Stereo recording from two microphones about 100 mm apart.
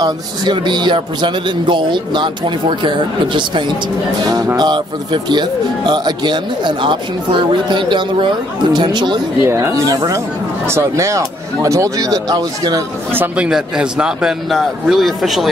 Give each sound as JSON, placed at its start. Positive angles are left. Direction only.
{"t": 0.0, "sound": "speech", "side_deg": -50}
{"t": 9.4, "sound": "speech", "side_deg": -30}
{"t": 13.1, "sound": "speech", "side_deg": -20}
{"t": 13.5, "sound": "a man's voice", "side_deg": -5}